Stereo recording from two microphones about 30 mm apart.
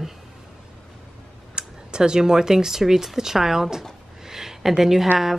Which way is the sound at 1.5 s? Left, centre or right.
Right.